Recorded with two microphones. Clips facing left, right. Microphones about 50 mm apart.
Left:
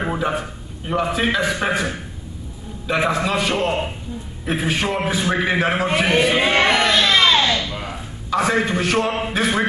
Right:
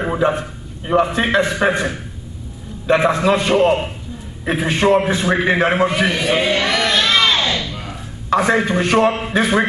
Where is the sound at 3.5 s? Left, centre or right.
Right.